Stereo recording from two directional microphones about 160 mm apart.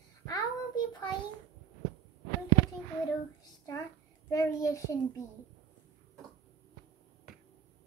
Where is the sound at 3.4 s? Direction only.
20° left (ahead or behind).